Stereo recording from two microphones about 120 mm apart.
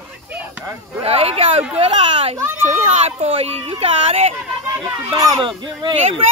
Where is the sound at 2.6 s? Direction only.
65° right (ahead or behind).